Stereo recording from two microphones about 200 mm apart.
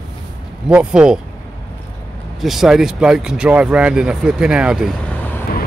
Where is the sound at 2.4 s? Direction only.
Centre (ahead or behind).